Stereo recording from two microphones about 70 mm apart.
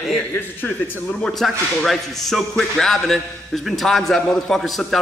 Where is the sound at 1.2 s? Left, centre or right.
Centre.